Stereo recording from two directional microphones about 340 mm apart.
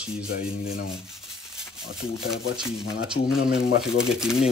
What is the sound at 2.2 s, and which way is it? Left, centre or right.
Speech, centre.